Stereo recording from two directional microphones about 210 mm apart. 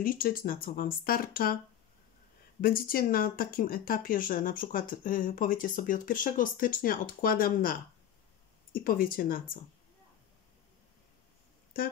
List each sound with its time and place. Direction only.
0.0 s speech: 45° left (ahead or behind)
2.6 s speech: 45° left (ahead or behind)